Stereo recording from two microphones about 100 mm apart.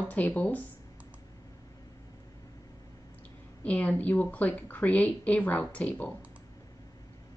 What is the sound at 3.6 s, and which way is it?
Speech, 15° left (ahead or behind).